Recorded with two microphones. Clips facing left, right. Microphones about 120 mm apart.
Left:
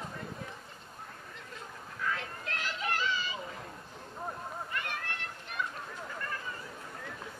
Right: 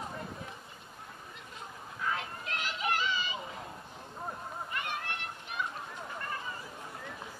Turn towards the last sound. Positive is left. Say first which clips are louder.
# right 1 dB
turn(degrees=-20)  # may be behind; listen again after turning